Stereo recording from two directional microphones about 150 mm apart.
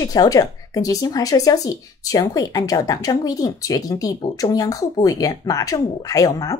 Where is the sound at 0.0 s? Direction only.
25° left (ahead or behind).